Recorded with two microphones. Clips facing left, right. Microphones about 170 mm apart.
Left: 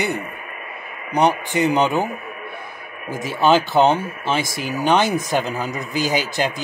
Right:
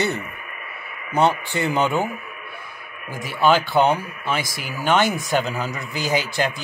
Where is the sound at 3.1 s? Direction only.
20° left (ahead or behind).